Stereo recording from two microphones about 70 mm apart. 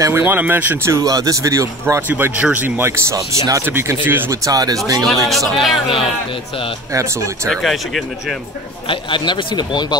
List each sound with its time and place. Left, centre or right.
0.1 s speech: right
0.8 s a man's voice: right
2.0 s speech: right
4.3 s speech: right
5.0 s speech: centre
6.9 s a man's voice: right
7.4 s speech: centre
9.2 s speech: left